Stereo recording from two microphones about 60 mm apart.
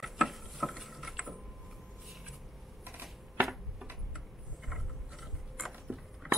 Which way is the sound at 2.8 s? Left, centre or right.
Right.